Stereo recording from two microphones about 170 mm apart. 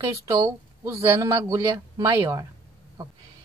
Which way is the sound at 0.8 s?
15° right (ahead or behind).